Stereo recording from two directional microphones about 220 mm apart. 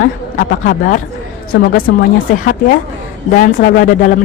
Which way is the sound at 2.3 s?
40° left (ahead or behind).